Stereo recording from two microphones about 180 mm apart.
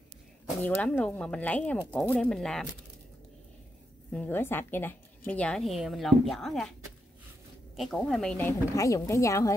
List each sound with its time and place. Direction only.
0.6 s a woman's voice: 10° left (ahead or behind)
4.1 s a woman's voice: 10° left (ahead or behind)
7.7 s speech: centre (ahead or behind); by 9.5 s 15° left (ahead or behind)